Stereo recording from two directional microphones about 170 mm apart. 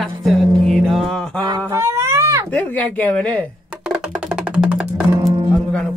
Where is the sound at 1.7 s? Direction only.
20° right (ahead or behind).